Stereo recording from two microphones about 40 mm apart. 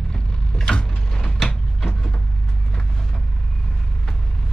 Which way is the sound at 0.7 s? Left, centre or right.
Left.